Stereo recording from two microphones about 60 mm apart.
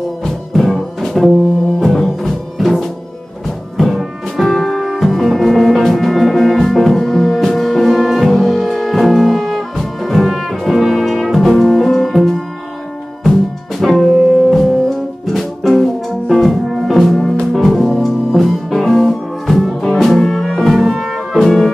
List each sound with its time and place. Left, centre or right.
0.2 s music: centre
13.7 s music: centre